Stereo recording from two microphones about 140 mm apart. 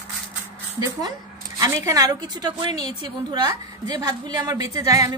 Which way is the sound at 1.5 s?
25° right (ahead or behind).